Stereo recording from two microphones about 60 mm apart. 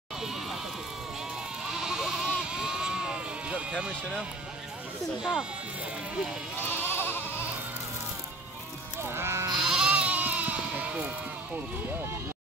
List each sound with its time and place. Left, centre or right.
0.2 s crowd: centre
1.7 s sheep: centre
5.2 s speech: centre
6.6 s goat: left
9.0 s sheep: right
9.5 s sheep: centre